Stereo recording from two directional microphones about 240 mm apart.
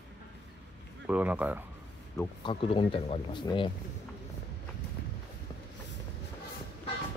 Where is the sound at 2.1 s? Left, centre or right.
Left.